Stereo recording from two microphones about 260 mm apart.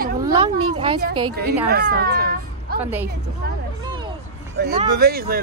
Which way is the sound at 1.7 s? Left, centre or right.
Right.